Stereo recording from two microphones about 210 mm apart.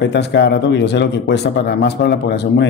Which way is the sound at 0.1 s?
55° left (ahead or behind).